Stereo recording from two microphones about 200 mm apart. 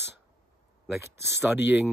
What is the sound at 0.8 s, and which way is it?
Speech, 10° right (ahead or behind).